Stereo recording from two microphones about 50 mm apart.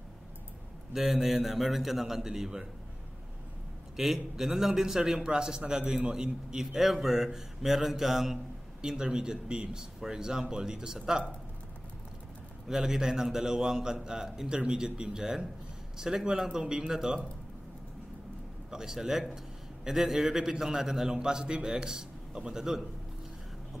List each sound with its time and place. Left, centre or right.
0.9 s a man's voice: centre
3.9 s a man's voice: centre
12.6 s a man's voice: centre
18.7 s a man's voice: centre